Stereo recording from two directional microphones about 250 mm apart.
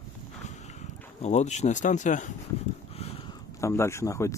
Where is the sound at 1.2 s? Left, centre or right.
Left.